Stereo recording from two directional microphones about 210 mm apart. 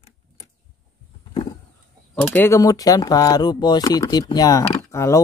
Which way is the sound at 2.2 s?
10° left (ahead or behind).